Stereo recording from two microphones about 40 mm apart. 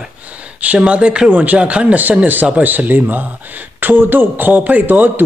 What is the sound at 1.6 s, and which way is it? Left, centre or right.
Speech, right.